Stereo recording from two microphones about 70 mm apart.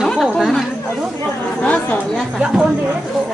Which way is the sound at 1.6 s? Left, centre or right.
Centre.